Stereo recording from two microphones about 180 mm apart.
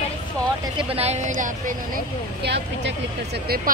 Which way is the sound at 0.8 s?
30° right (ahead or behind).